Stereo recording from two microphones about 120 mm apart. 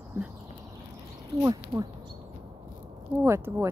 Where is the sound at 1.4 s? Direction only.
30° right (ahead or behind).